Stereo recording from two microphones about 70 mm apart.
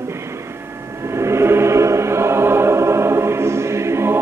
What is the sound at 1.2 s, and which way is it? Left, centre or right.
Choir, right.